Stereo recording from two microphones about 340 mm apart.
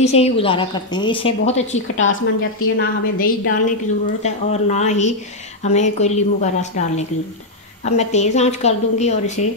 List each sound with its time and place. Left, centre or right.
0.0 s a woman's voice: centre
2.0 s a woman's voice: left